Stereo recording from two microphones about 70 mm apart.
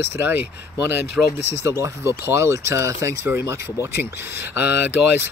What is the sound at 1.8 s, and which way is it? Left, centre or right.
Speech, right.